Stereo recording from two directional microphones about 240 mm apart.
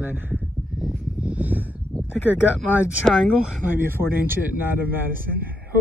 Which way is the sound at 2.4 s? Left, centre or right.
Centre.